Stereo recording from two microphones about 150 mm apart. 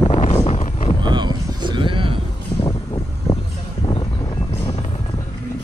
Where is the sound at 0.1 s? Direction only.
40° left (ahead or behind).